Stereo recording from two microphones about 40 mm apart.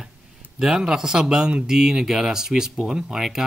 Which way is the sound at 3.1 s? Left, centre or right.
Centre.